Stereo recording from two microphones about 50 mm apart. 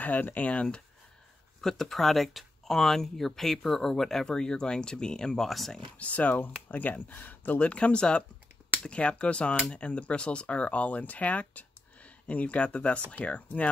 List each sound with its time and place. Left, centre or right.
0.0 s speech: left
1.6 s speech: centre
5.5 s speech: centre
5.9 s speech: left